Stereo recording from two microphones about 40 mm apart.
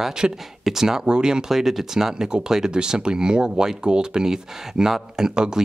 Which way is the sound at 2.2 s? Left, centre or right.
Right.